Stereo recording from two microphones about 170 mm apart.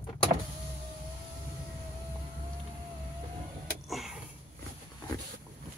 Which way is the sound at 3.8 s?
Centre (ahead or behind).